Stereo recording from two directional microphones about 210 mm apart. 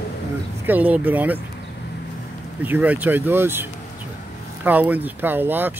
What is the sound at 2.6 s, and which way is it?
Speech, 10° right (ahead or behind).